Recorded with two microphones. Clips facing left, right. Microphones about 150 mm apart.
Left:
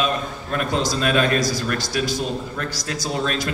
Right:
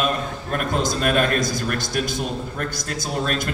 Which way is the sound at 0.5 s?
50° right (ahead or behind).